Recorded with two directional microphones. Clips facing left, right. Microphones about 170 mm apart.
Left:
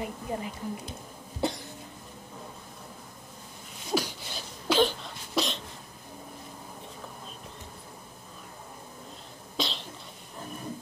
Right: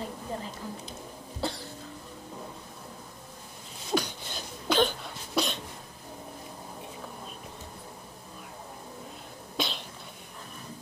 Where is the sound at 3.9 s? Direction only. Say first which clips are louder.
Even; 5° left (ahead or behind).